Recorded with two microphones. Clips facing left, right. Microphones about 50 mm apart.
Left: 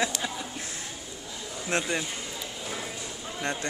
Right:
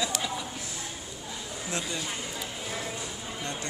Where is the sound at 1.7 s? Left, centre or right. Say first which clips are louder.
Left 6 dB; left.